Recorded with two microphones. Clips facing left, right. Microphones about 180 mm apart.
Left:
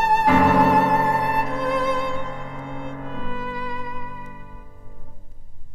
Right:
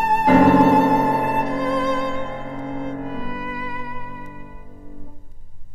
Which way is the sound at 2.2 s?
30° right (ahead or behind).